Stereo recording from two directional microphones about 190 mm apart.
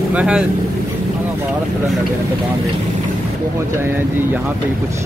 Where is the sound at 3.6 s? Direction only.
15° right (ahead or behind).